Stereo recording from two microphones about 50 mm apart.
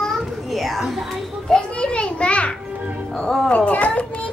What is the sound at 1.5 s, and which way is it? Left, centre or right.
Children playing, centre.